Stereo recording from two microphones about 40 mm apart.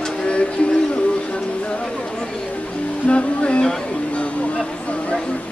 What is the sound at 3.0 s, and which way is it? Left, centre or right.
Music, left.